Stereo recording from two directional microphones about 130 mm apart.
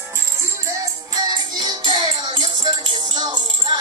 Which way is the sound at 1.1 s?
35° right (ahead or behind).